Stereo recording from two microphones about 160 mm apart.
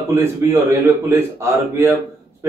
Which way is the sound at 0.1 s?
15° right (ahead or behind).